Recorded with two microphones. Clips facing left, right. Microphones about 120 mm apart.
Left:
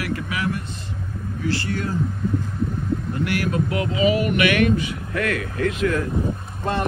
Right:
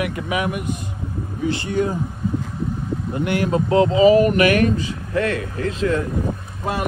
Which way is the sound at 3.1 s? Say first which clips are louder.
Right 5 dB; 20° right (ahead or behind).